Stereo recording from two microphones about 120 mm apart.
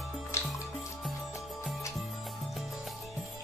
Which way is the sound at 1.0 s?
Centre (ahead or behind).